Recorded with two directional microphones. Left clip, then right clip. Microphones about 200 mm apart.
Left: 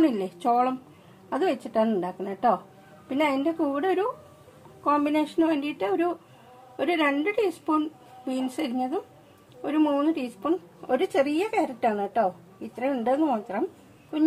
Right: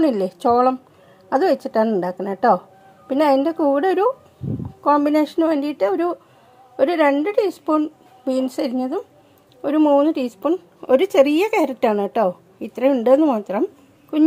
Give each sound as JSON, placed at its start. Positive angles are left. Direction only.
{"t": 0.0, "sound": "a woman's voice", "side_deg": -40}